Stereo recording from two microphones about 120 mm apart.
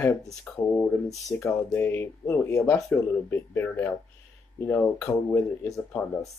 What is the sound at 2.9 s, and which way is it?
Speech, 20° left (ahead or behind).